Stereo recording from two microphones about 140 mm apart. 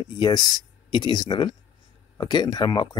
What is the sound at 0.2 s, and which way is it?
Speech, 30° left (ahead or behind).